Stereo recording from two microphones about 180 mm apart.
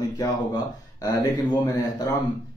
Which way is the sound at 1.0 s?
20° left (ahead or behind).